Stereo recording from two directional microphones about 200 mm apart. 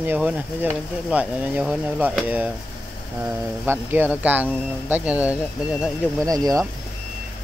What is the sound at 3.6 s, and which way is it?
Speech, 10° right (ahead or behind).